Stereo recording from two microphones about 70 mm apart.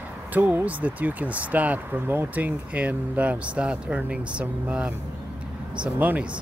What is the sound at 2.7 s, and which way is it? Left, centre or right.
Speech, right.